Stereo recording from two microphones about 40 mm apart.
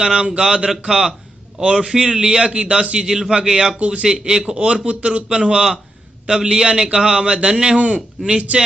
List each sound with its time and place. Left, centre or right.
0.0 s a man's voice: right
3.7 s a man's voice: right
4.1 s a man's voice: centre
4.6 s a man's voice: right